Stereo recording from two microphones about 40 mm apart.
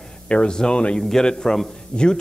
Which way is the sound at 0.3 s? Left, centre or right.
Left.